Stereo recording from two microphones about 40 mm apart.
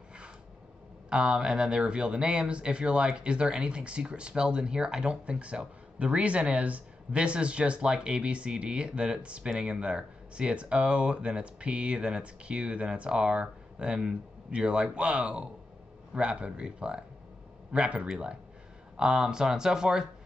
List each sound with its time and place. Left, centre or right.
1.1 s speech: centre